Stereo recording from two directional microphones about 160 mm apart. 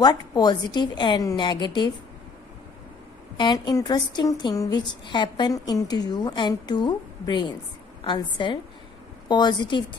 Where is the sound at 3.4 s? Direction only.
25° left (ahead or behind).